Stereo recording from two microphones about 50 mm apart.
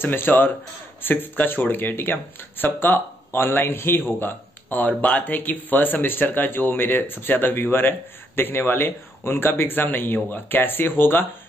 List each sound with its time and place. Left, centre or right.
0.0 s speech: left